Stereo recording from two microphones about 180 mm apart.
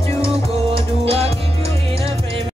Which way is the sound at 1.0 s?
35° right (ahead or behind).